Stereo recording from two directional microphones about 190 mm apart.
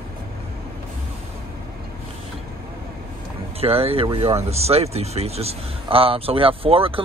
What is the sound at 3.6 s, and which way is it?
Speech, 30° right (ahead or behind).